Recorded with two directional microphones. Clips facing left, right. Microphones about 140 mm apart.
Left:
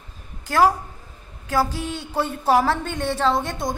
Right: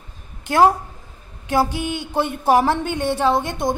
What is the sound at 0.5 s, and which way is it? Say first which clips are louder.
A woman's voice: right 3 dB; 25° right (ahead or behind).